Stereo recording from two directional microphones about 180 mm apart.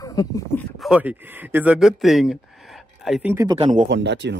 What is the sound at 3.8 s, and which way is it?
Speech, 80° right.